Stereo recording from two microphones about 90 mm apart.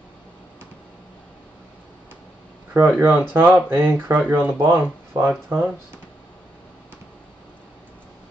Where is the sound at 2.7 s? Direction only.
20° right (ahead or behind).